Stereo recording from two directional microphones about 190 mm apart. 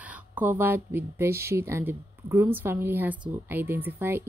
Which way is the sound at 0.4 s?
10° right (ahead or behind).